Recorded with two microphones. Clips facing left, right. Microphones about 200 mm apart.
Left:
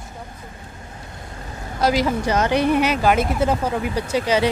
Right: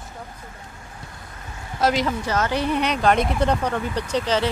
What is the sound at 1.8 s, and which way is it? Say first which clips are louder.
Speech: left 2 dB; 5° left (ahead or behind).